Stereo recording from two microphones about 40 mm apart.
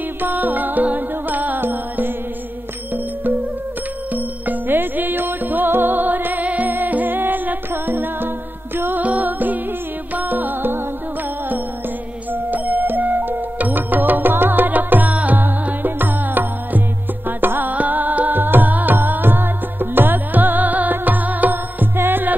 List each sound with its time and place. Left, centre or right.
0.2 s music: right
4.1 s music: right
6.4 s music: right
6.7 s music: right
9.0 s music: right
12.3 s music: right
21.9 s music: right